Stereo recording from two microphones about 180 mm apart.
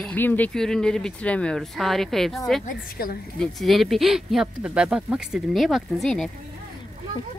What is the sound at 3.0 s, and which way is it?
Speech, 55° left (ahead or behind).